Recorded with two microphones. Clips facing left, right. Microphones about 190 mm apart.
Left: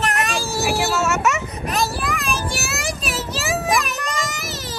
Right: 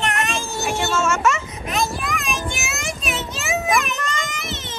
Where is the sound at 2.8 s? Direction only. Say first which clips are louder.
Left 1 dB; 35° left (ahead or behind).